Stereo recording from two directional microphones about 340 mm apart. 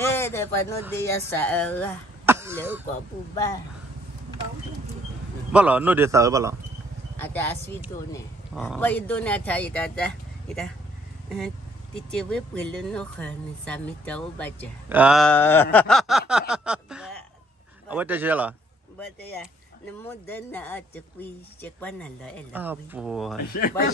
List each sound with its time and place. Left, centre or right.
0.0 s a sound: centre
1.0 s speech: centre
2.2 s throat clearing: centre
5.5 s a man's voice: centre
7.2 s speech: centre
8.5 s speech: centre
14.9 s a sound: centre
17.8 s speech: centre
20.2 s speech: centre
23.4 s speech: left